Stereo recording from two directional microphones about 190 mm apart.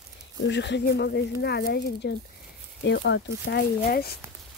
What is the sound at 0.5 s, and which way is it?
Speech, 65° left (ahead or behind).